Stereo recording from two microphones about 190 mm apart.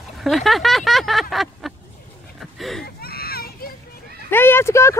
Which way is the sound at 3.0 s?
55° left (ahead or behind).